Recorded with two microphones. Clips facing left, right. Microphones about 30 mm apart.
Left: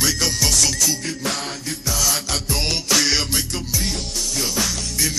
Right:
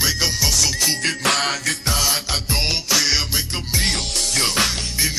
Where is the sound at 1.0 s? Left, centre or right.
Right.